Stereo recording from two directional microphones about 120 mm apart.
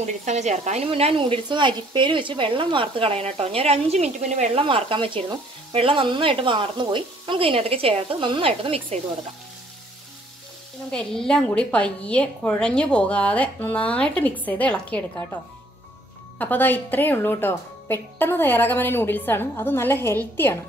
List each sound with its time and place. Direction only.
0.0 s a woman's voice: 75° right (ahead or behind); by 1.2 s 55° right (ahead or behind)
1.2 s speech: 40° right (ahead or behind); by 4.6 s 70° right (ahead or behind)
4.6 s speech: 45° right (ahead or behind)
10.9 s a woman's voice: 5° left (ahead or behind)
16.3 s a woman's voice: 15° left (ahead or behind)